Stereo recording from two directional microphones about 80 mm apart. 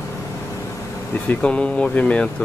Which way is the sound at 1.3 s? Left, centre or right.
Centre.